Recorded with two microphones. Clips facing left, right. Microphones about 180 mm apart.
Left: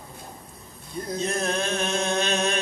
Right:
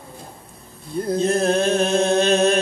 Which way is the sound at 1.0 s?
35° right (ahead or behind).